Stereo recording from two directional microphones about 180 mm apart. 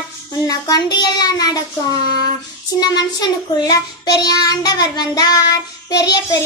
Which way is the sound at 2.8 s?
20° left (ahead or behind).